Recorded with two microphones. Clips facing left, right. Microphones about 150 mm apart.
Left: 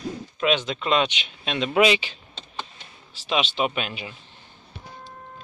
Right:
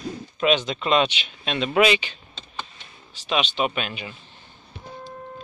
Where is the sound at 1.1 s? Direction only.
15° left (ahead or behind).